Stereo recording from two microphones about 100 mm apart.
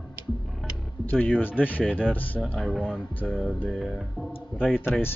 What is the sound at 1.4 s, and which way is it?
Speech, 20° left (ahead or behind).